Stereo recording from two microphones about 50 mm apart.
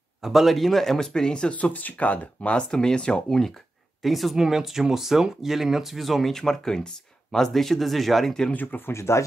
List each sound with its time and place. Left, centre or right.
0.2 s speech: centre
1.5 s speech: left
2.7 s speech: centre
8.9 s speech: left